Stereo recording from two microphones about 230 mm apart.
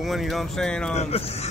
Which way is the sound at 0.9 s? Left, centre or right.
Left.